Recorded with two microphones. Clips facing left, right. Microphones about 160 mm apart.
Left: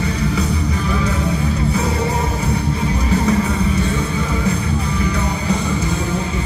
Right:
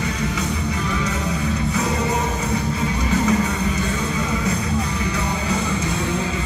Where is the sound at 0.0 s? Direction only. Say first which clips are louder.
Left 4 dB; 35° left (ahead or behind).